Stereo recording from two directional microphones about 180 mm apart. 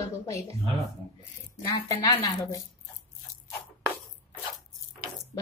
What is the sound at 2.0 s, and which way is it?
Speech, 20° left (ahead or behind).